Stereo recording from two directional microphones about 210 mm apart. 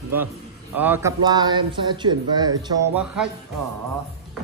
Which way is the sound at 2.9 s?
5° right (ahead or behind).